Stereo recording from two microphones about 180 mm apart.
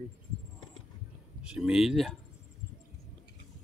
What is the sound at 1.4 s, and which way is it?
Speech, 5° right (ahead or behind).